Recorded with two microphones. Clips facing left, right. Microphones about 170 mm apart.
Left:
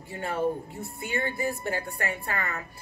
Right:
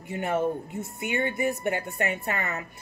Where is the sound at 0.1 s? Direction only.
20° right (ahead or behind).